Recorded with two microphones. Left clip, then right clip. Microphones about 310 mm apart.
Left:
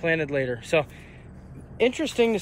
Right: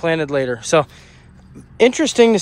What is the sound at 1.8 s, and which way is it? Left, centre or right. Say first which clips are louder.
Speech: right 10 dB; right.